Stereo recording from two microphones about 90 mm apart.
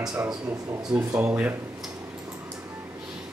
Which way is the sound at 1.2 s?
20° right (ahead or behind).